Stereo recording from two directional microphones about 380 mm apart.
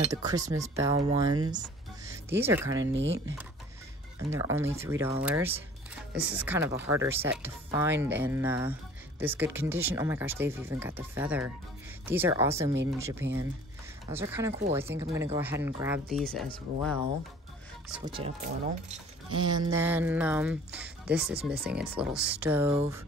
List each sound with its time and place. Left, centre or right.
0.1 s speech: centre
2.4 s speech: centre
2.8 s speech: right
4.3 s speech: centre
13.2 s speech: right
14.1 s speech: centre
16.8 s speech: left
17.9 s speech: centre
21.1 s speech: right
21.5 s speech: centre